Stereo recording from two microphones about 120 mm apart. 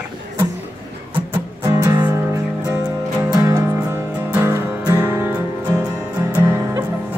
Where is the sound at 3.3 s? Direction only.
25° right (ahead or behind).